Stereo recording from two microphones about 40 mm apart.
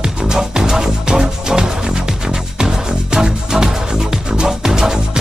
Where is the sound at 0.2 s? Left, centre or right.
Centre.